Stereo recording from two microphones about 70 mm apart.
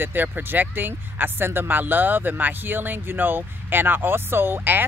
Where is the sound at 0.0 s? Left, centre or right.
Right.